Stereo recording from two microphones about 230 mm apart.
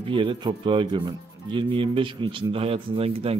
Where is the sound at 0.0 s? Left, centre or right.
Right.